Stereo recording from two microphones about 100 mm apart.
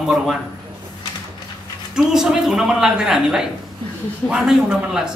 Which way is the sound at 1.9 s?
5° right (ahead or behind).